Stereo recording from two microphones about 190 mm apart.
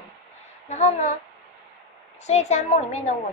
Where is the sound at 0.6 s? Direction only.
35° left (ahead or behind).